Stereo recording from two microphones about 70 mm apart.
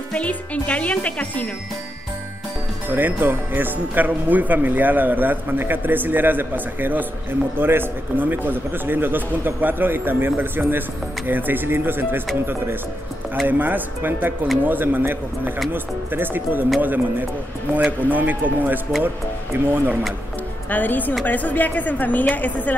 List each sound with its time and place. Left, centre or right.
0.1 s a woman's voice: centre
2.9 s a man's voice: right
13.5 s a man's voice: right
20.7 s a woman's voice: left